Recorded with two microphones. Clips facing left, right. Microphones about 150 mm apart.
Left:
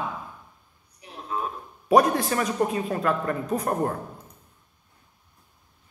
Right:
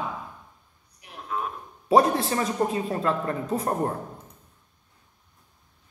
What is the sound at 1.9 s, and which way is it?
A man's voice, 25° right (ahead or behind).